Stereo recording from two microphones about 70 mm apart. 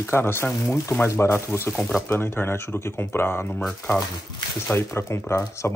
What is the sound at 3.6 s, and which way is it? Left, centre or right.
Speech, centre.